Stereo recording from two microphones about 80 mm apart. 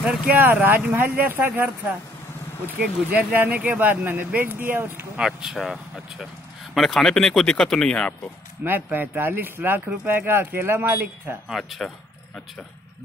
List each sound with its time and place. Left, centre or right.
0.0 s speech: centre
0.4 s speech: right
2.8 s speech: centre
5.1 s speech: centre
8.6 s speech: right
11.4 s speech: centre